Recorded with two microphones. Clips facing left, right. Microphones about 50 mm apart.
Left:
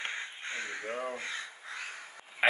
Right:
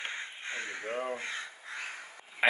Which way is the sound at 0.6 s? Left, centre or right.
Right.